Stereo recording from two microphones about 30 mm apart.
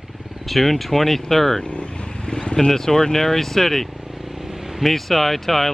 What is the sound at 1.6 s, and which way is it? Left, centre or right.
Vehicle, left.